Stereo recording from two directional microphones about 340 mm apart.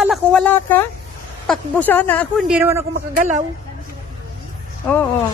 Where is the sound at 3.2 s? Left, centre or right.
Right.